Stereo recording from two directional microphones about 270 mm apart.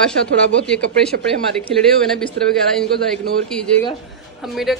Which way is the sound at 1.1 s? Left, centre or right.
Right.